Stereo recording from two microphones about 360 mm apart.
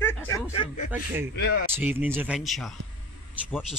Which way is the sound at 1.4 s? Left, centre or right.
Left.